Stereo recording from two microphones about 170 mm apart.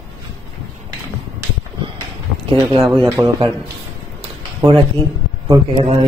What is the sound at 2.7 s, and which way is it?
Speech, 30° right (ahead or behind).